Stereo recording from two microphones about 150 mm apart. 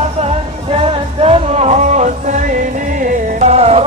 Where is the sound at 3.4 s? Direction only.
45° right (ahead or behind).